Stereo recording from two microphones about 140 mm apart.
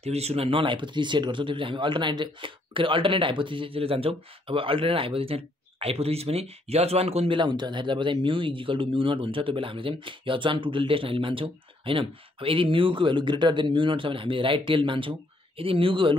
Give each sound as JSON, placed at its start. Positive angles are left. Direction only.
{"t": 0.0, "sound": "speech", "side_deg": -50}